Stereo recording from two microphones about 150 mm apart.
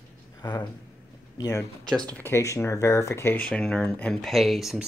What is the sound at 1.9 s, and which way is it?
Speech, 5° left (ahead or behind).